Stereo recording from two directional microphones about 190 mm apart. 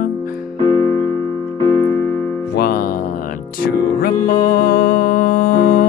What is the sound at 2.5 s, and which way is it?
Music, 55° left (ahead or behind).